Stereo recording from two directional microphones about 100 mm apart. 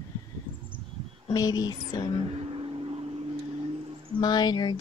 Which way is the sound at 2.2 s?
80° right.